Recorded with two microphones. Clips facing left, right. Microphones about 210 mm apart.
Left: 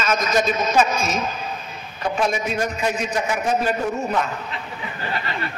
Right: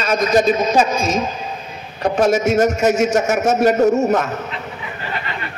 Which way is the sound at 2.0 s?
45° right (ahead or behind).